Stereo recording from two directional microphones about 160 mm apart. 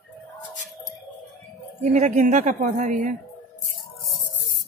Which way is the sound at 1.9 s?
50° right (ahead or behind).